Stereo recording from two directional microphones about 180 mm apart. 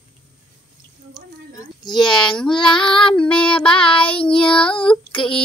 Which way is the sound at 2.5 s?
25° left (ahead or behind).